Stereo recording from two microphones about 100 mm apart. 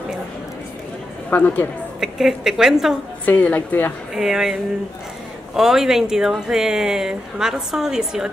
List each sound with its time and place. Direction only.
1.3 s a woman's voice: 20° left (ahead or behind)
2.0 s speech: 5° right (ahead or behind)
3.3 s a woman's voice: 15° left (ahead or behind)
4.1 s speech: 5° right (ahead or behind)